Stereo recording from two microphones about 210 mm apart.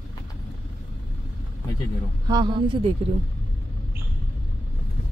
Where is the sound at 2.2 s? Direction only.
20° right (ahead or behind).